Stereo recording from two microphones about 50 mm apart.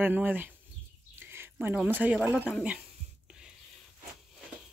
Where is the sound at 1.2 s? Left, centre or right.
Right.